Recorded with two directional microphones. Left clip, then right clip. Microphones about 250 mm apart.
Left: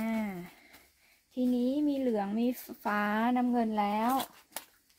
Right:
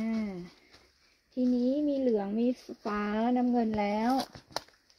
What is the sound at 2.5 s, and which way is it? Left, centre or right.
Speech, left.